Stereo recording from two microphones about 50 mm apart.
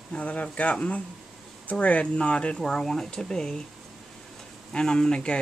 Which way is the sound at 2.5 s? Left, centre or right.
Centre.